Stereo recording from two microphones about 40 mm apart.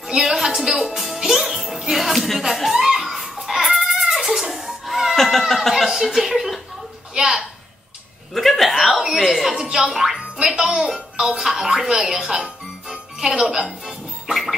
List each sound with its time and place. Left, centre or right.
0.1 s speech: centre
0.7 s music: centre
2.5 s a sound: centre
4.1 s music: centre
5.1 s cat: centre
5.5 s speech: centre
5.9 s speech: centre
8.4 s chuckle: centre
9.0 s speech: centre
9.5 s speech: centre